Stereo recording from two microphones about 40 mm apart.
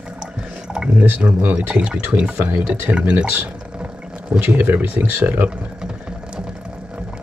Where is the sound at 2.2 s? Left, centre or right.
Right.